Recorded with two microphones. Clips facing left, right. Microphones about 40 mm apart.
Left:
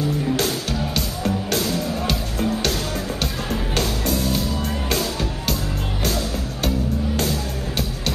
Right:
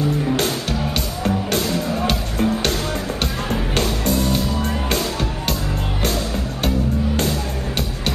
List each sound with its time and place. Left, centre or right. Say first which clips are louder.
0.4 s music: right 2 dB; centre
3.7 s music: right 3 dB; centre